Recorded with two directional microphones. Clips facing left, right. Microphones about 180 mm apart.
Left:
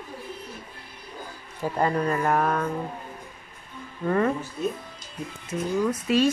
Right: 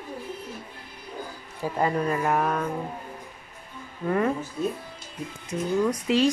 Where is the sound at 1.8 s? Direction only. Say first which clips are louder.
Left 1 dB; 10° right (ahead or behind).